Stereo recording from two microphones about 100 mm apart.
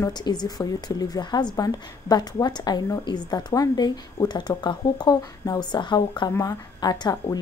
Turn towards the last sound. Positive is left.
turn(degrees=40)  # may be behind; listen again after turning